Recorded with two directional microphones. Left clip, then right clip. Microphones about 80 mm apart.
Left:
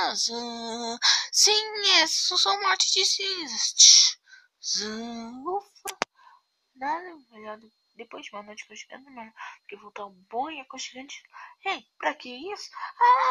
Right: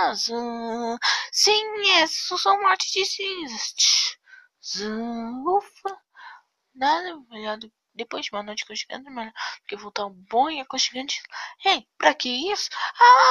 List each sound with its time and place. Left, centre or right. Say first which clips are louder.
0.0 s speech: right 4 dB; centre
5.4 s speech: right 9 dB; centre
6.8 s speech: right 9 dB; right
13.0 s a sound: right 7 dB; right